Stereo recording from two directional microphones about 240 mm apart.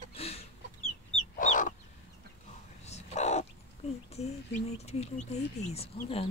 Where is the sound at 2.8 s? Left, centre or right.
Left.